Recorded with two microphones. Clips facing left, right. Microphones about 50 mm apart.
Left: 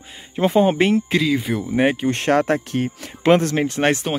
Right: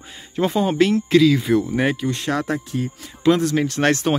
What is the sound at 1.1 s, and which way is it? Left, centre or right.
Speech, centre.